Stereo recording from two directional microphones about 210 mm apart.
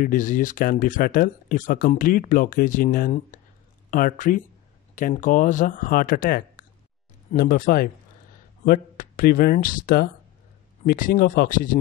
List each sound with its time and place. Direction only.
0.0 s speech: 40° left (ahead or behind)